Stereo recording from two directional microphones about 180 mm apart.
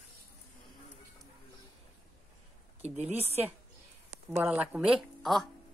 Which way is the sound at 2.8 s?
40° right (ahead or behind).